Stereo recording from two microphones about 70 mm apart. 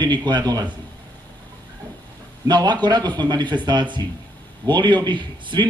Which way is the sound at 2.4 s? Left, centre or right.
Right.